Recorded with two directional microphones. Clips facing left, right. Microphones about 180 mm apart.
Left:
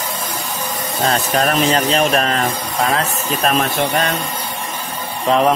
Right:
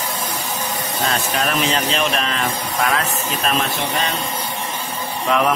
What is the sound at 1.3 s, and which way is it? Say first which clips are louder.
Speech: left 6 dB; 40° left (ahead or behind).